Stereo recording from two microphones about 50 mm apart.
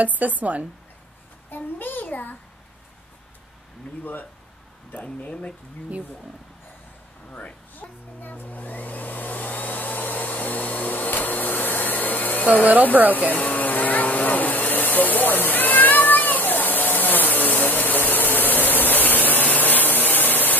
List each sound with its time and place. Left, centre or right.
0.0 s a woman's voice: right
1.5 s a child's voice: left
4.0 s a child's voice: left
4.9 s speech: left
7.3 s speech: left
8.2 s vacuum cleaner: left
13.1 s a sound: left